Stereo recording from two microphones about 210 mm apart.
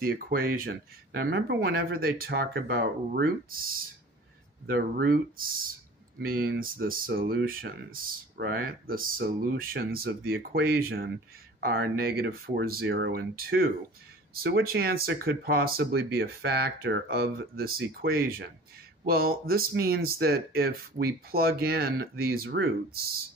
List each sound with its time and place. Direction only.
0.0 s speech: 45° right (ahead or behind)
4.6 s speech: 45° right (ahead or behind)